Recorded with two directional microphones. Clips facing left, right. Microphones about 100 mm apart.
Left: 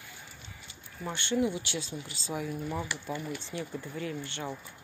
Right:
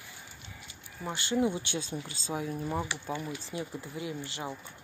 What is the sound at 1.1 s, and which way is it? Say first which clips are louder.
Speech: even; 30° right (ahead or behind).